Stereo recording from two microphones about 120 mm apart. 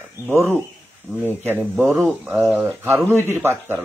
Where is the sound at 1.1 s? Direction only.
15° right (ahead or behind).